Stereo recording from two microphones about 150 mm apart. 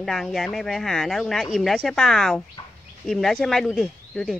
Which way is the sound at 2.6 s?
35° left (ahead or behind).